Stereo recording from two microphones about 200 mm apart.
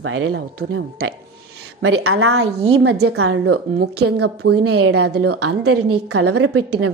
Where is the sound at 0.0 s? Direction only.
90° right.